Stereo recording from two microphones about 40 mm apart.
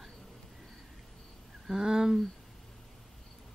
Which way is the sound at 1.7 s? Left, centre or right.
Centre.